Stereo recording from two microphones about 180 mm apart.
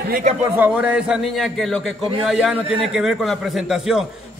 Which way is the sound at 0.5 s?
10° right (ahead or behind).